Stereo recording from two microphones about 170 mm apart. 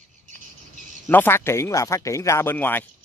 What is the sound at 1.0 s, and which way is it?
Speech, 10° left (ahead or behind).